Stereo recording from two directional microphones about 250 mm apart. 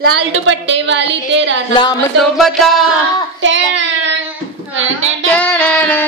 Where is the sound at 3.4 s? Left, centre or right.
Right.